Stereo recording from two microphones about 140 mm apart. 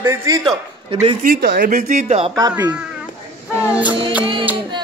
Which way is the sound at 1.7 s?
55° right (ahead or behind).